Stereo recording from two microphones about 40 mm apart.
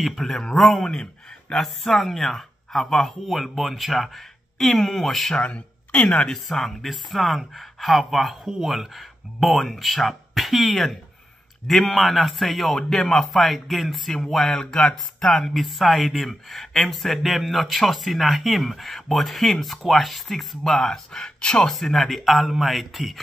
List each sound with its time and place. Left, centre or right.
0.0 s speech: centre
5.4 s a sound: left
6.3 s speech: centre
14.5 s speech: centre
21.6 s speech: centre